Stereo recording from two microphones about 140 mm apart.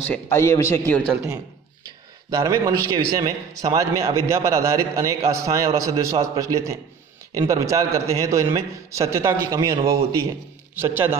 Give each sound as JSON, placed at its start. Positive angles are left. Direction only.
{"t": 0.0, "sound": "a man's voice", "side_deg": 10}
{"t": 0.4, "sound": "a man's voice", "side_deg": 20}
{"t": 2.3, "sound": "a man's voice", "side_deg": -25}